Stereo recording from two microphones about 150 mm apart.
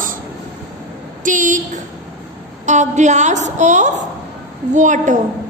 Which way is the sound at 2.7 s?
55° right (ahead or behind).